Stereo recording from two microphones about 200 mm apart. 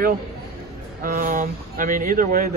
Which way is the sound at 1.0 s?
45° right (ahead or behind).